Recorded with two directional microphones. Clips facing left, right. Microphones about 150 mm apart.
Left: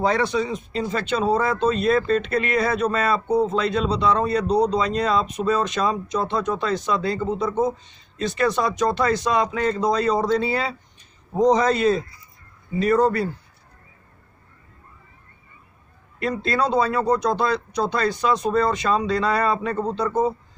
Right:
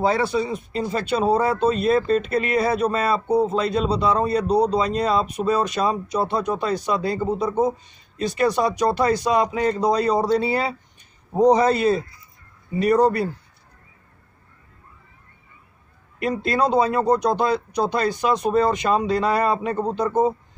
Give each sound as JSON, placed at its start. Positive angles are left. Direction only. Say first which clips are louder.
{"t": 0.0, "sound": "speech", "louder": "right 1 dB", "side_deg": -5}
{"t": 16.2, "sound": "speech", "louder": "right 2 dB", "side_deg": -15}